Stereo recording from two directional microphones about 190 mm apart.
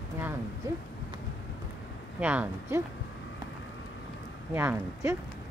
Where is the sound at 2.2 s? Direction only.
10° right (ahead or behind).